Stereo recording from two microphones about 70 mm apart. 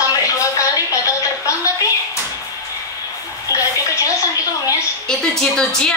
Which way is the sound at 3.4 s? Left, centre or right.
Left.